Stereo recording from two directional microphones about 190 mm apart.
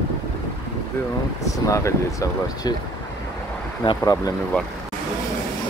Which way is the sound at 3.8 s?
20° left (ahead or behind).